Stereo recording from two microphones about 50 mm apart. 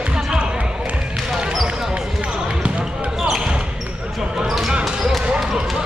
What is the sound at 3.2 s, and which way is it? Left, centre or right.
Basketball bounce, centre.